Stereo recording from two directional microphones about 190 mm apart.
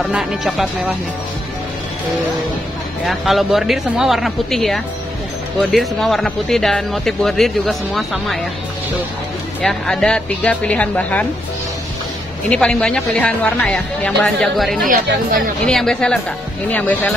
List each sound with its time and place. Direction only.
0.0 s speech: centre (ahead or behind)
3.1 s speech: centre (ahead or behind)
9.6 s a woman's voice: 5° left (ahead or behind)
12.4 s speech: 5° left (ahead or behind)
14.9 s speech: 45° right (ahead or behind)
15.6 s a woman's voice: 5° left (ahead or behind)